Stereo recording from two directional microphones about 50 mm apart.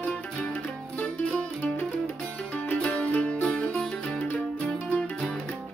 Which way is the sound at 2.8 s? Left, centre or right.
Left.